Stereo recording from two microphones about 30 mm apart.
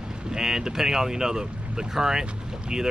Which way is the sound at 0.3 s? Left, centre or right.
Centre.